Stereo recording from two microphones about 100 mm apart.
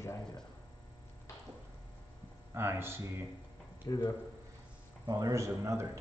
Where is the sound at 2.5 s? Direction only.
25° right (ahead or behind).